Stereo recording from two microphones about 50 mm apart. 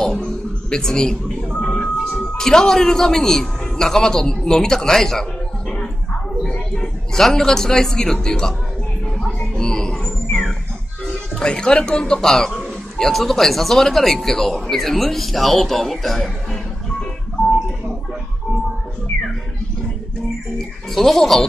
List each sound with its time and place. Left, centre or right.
0.2 s a sound: centre
2.3 s a man's voice: centre
6.7 s a man's voice: centre
9.6 s music: centre
11.1 s speech: centre
20.5 s a sound: centre